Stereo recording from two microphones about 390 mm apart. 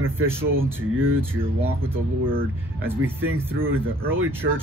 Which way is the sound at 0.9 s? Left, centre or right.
Right.